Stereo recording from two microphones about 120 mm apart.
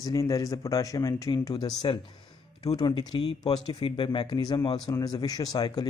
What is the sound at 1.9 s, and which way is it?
Speech, 40° left (ahead or behind).